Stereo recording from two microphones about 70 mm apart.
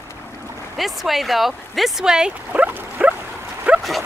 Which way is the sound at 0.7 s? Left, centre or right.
Centre.